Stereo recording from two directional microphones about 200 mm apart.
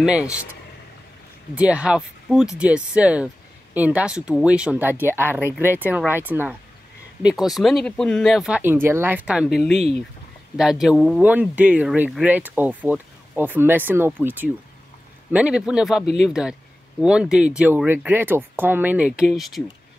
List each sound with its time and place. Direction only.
0.0 s speech: 5° right (ahead or behind)
1.5 s speech: 5° right (ahead or behind)